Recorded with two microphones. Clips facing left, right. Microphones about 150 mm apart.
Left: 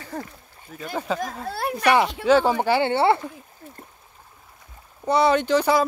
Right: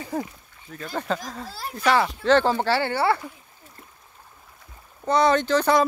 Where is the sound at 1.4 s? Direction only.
60° left (ahead or behind).